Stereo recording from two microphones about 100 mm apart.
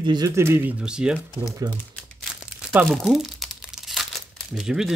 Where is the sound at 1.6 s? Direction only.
45° right (ahead or behind).